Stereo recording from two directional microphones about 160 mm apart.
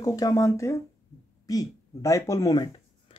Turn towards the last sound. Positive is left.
turn(degrees=30)  # may be behind; listen again after turning